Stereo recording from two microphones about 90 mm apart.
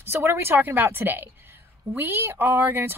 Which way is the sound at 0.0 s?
25° right (ahead or behind).